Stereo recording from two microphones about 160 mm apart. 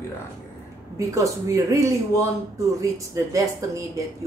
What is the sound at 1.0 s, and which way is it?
Speech, 20° right (ahead or behind).